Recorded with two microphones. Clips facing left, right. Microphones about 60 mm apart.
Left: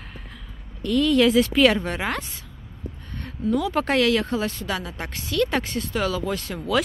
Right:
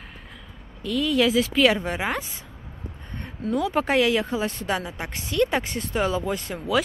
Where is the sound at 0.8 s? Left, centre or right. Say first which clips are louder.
Left 3 dB; centre.